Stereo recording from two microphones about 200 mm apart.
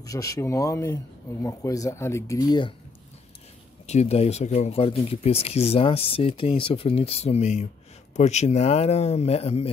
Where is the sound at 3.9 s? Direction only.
30° left (ahead or behind).